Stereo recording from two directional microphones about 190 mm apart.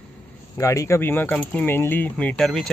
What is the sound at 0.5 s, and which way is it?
Speech, 15° left (ahead or behind).